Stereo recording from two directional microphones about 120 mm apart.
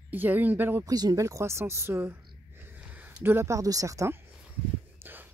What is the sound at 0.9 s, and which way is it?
Speech, 30° right (ahead or behind).